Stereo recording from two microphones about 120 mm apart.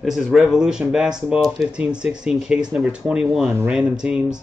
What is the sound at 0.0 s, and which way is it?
Speech, centre (ahead or behind).